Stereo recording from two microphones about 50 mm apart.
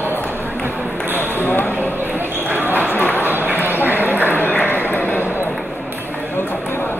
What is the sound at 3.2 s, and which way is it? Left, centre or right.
Run, right.